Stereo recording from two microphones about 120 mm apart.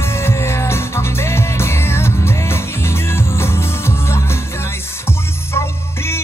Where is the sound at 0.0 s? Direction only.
20° left (ahead or behind).